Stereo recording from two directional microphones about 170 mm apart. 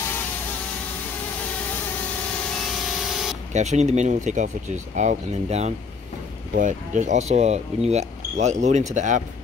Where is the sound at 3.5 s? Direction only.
40° right (ahead or behind).